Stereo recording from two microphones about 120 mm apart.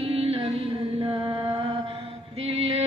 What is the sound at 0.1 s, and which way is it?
Music, 55° right (ahead or behind).